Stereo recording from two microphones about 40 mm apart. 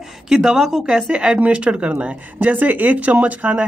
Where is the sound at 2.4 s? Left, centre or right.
Right.